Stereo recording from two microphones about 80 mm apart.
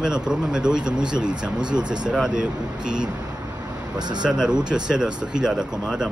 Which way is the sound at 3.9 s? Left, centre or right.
Right.